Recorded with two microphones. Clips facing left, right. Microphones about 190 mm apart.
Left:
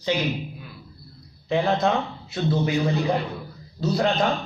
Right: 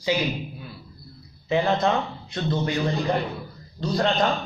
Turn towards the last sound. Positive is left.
turn(degrees=5)  # may be behind; listen again after turning